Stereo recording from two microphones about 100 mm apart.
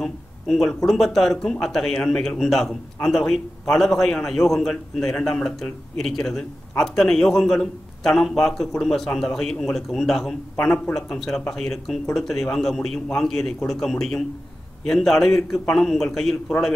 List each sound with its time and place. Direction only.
0.0 s speech: 5° left (ahead or behind)